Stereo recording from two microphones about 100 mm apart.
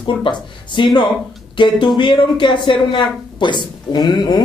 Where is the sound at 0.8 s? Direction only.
55° left (ahead or behind).